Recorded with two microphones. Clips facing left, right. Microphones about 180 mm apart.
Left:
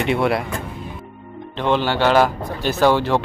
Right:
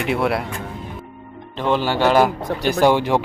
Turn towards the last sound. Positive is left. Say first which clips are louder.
# right 1 dB
turn(degrees=-15)  # may be behind; listen again after turning